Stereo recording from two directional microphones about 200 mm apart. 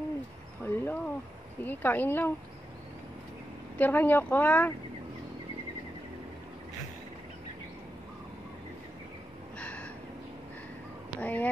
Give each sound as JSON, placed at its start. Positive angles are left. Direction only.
{"t": 0.7, "sound": "a sound", "side_deg": 10}
{"t": 1.6, "sound": "speech", "side_deg": 10}
{"t": 3.7, "sound": "speech", "side_deg": 10}
{"t": 9.6, "sound": "gasp", "side_deg": 5}
{"t": 11.1, "sound": "speech", "side_deg": 10}